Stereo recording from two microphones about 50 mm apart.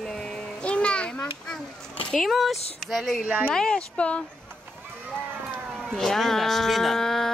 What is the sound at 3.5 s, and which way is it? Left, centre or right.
Speech, centre.